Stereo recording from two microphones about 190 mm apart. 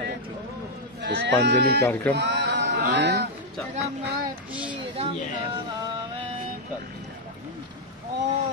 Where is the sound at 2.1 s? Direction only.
65° right (ahead or behind).